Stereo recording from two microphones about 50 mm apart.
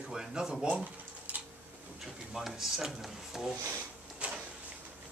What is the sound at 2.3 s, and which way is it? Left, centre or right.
Speech, centre.